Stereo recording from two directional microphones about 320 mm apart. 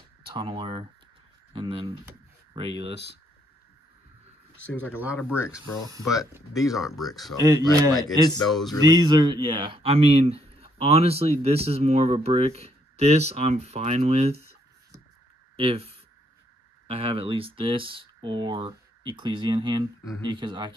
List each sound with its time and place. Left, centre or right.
0.3 s speech: centre
2.0 s a sound: centre
4.9 s speech: centre
7.3 s speech: centre
7.9 s speech: centre
8.5 s speech: centre
8.8 s speech: centre